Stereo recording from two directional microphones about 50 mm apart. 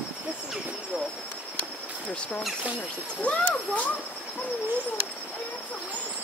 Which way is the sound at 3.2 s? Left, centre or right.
Left.